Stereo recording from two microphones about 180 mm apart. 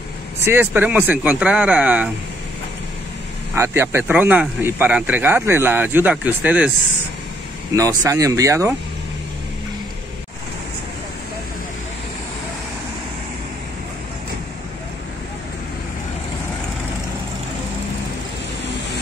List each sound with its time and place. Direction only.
0.4 s speech: 10° right (ahead or behind)
3.5 s speech: 15° right (ahead or behind)
7.7 s speech: 20° right (ahead or behind)